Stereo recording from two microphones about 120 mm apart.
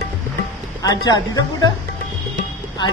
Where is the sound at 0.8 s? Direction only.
30° left (ahead or behind).